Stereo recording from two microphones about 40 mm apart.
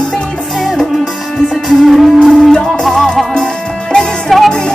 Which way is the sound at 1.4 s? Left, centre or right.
Centre.